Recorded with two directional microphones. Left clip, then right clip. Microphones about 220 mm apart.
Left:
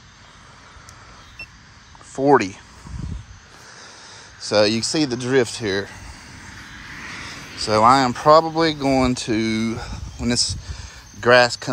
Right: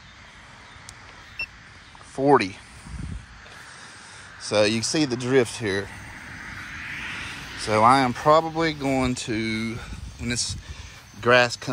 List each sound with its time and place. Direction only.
2.1 s speech: 5° left (ahead or behind)
4.5 s speech: 5° left (ahead or behind)
6.5 s vehicle: 5° left (ahead or behind)
6.8 s vehicle: 20° left (ahead or behind); by 7.6 s 40° left (ahead or behind)
7.6 s speech: centre (ahead or behind)
10.7 s a sound: 5° left (ahead or behind)